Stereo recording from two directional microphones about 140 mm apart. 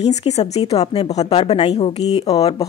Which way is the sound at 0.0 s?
50° left (ahead or behind).